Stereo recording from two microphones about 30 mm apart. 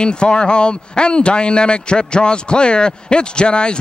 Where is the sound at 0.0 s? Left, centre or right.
Left.